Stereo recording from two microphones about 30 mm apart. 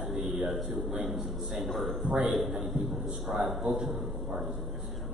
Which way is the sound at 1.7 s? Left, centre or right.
Centre.